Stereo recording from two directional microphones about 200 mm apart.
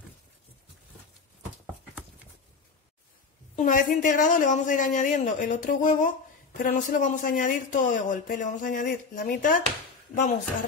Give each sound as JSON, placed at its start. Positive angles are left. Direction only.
{"t": 3.5, "sound": "speech", "side_deg": 40}